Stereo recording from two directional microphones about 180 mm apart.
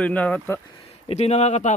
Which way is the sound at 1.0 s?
35° left (ahead or behind).